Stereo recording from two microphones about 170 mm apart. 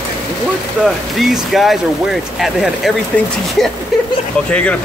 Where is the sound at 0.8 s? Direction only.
Centre (ahead or behind).